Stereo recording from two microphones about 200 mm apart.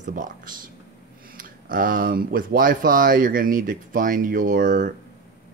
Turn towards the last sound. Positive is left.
turn(degrees=-40)  # may be behind; listen again after turning